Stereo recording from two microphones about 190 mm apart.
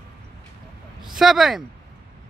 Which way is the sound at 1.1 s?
Centre (ahead or behind).